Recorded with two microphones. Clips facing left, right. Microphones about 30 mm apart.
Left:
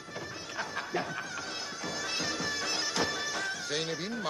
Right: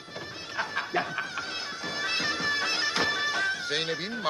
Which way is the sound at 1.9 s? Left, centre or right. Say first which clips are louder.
Right 5 dB; right.